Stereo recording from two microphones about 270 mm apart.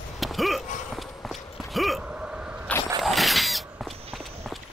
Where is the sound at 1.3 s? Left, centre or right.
Centre.